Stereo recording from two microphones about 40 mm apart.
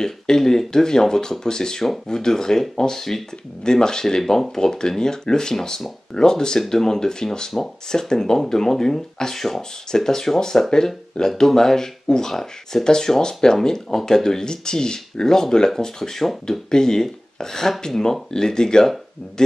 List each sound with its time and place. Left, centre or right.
0.0 s speech: centre